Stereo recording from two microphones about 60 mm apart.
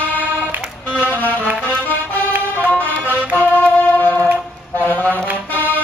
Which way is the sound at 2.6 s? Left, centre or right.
Left.